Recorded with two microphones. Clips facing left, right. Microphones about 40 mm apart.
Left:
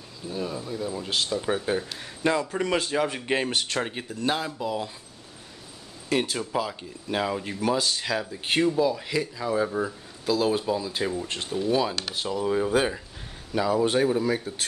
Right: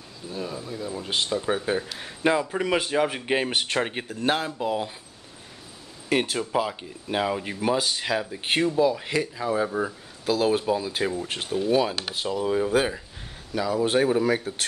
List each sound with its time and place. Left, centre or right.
0.3 s speech: centre
1.1 s speech: right
1.5 s speech: centre
3.6 s speech: right
6.3 s speech: centre
7.1 s speech: centre
9.5 s speech: centre
13.8 s speech: centre
14.2 s speech: right